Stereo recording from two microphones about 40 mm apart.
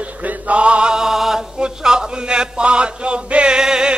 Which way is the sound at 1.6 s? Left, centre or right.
Centre.